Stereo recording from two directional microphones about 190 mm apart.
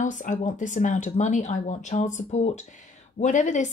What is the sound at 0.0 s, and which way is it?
Speech, 40° left (ahead or behind).